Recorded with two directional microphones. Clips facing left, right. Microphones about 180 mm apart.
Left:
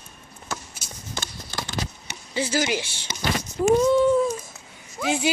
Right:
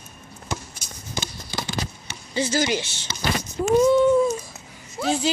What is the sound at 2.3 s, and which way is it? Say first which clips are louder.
Speech: right 1 dB; 10° left (ahead or behind).